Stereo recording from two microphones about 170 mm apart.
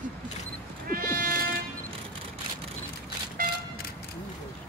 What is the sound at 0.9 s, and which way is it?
Cat, 60° right (ahead or behind).